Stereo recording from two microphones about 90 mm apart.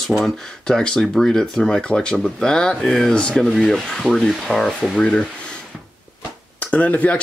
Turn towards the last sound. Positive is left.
turn(degrees=15)  # may be behind; listen again after turning